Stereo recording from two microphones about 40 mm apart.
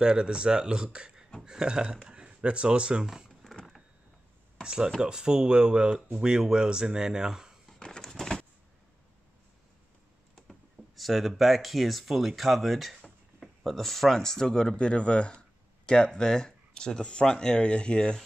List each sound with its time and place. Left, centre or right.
0.0 s speech: right
4.6 s speech: centre
8.0 s a sound: centre
11.0 s speech: centre
14.8 s speech: left